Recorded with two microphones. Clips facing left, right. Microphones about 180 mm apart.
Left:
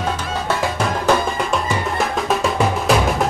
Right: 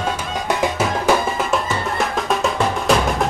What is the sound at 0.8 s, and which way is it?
Music, 5° right (ahead or behind).